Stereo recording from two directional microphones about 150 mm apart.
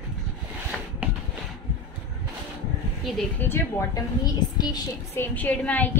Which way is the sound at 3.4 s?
15° left (ahead or behind).